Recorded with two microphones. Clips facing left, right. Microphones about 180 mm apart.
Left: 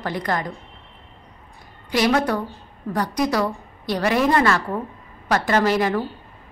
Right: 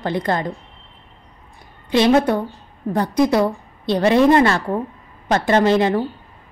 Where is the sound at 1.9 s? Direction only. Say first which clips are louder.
Right 5 dB; 25° right (ahead or behind).